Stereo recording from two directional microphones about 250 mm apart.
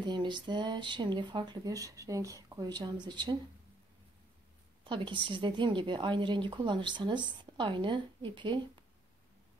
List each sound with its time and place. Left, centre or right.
0.0 s speech: centre
4.8 s a woman's voice: centre